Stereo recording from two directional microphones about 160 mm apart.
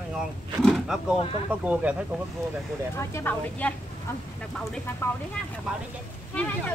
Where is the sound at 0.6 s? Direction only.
Centre (ahead or behind).